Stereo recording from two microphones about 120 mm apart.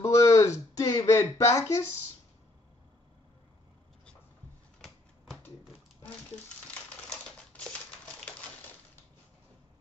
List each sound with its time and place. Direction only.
0.0 s a sound: 25° left (ahead or behind)
4.8 s typewriter: 5° left (ahead or behind)
6.7 s typewriter: 10° left (ahead or behind)